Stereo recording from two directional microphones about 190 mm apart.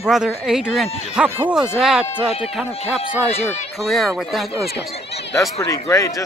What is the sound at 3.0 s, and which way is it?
Speech, 35° left (ahead or behind).